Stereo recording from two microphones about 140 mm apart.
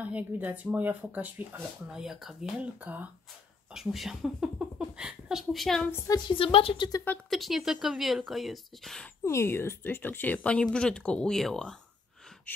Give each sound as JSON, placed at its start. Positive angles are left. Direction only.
{"t": 0.1, "sound": "speech", "side_deg": -10}
{"t": 5.9, "sound": "a woman's voice", "side_deg": 25}
{"t": 7.2, "sound": "speech", "side_deg": 0}
{"t": 9.2, "sound": "speech", "side_deg": 20}
{"t": 12.5, "sound": "a sound", "side_deg": 10}